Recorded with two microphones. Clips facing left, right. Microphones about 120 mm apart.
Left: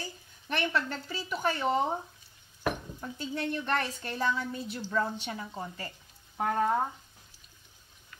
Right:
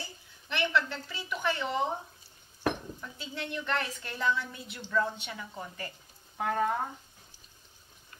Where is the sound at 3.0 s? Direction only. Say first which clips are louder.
Left 8 dB; 40° left (ahead or behind).